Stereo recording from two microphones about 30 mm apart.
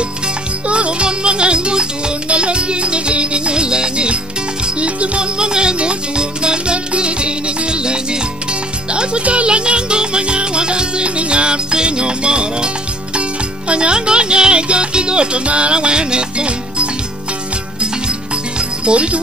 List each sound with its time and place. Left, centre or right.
0.7 s music: right
5.4 s music: right